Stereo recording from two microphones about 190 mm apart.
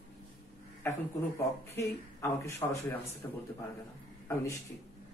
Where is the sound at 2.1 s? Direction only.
15° left (ahead or behind).